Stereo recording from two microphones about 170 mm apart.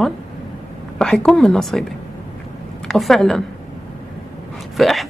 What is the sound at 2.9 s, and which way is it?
Speech, centre (ahead or behind).